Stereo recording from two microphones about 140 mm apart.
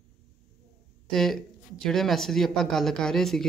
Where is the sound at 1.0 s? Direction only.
5° left (ahead or behind).